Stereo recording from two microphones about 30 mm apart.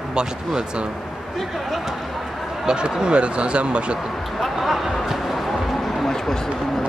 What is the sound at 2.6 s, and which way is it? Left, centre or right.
Speech, right.